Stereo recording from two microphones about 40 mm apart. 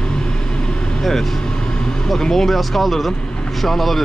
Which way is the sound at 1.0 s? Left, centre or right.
Centre.